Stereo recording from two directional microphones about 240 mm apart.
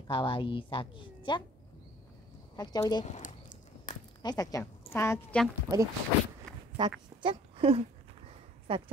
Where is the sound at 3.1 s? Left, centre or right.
Left.